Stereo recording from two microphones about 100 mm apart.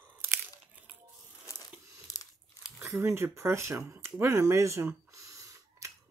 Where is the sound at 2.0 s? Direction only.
35° left (ahead or behind).